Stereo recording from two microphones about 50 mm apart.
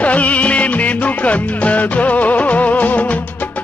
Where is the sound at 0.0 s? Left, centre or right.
Left.